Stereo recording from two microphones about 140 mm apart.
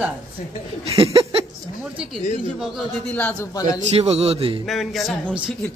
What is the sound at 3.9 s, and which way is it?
Speech, 45° right (ahead or behind).